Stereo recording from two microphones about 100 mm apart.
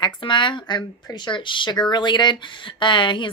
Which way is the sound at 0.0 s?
50° left (ahead or behind).